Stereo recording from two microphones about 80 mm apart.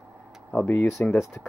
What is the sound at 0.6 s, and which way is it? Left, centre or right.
Speech, left.